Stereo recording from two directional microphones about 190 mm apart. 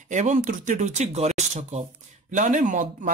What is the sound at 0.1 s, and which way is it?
Speech, 40° right (ahead or behind).